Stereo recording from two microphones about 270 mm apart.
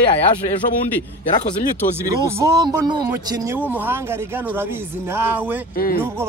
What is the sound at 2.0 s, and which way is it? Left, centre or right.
Speech, centre.